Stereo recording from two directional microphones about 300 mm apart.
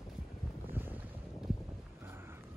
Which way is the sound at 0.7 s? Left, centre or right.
Centre.